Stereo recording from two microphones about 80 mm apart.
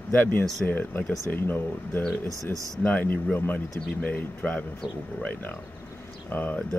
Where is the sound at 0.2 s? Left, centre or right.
Left.